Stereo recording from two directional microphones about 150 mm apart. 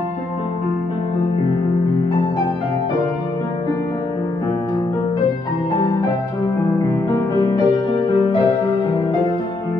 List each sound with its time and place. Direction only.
7.1 s music: 25° left (ahead or behind)